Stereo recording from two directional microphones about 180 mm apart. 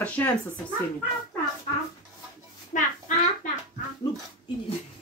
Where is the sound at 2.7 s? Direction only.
45° left (ahead or behind).